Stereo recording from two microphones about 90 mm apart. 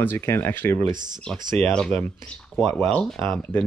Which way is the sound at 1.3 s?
5° left (ahead or behind).